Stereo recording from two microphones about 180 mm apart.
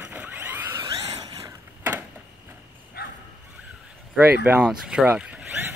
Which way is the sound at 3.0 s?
60° left (ahead or behind).